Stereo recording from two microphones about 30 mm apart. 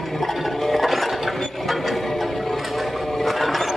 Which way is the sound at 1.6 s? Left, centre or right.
Centre.